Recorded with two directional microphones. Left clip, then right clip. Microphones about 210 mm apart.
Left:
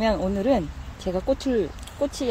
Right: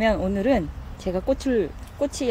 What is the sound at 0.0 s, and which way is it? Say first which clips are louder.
Speech: right 1 dB; centre (ahead or behind).